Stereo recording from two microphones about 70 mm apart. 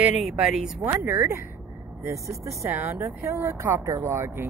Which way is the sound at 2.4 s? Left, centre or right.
Right.